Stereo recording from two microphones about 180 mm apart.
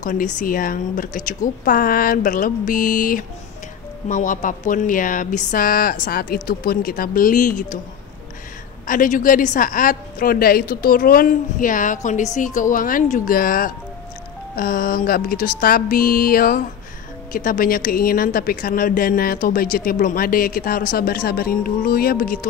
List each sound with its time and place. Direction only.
0.0 s speech: 45° left (ahead or behind)
8.8 s speech: 50° left (ahead or behind)